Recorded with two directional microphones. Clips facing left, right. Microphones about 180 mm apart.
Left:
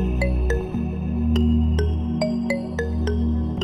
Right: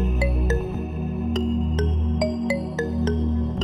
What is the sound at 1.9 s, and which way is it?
Music, 30° left (ahead or behind).